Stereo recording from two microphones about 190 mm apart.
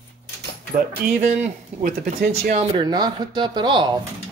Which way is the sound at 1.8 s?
50° right (ahead or behind).